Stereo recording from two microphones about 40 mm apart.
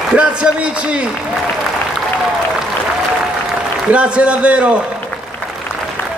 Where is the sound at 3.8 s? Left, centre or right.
Right.